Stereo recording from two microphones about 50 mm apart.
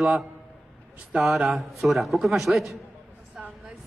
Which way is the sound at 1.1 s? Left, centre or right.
Centre.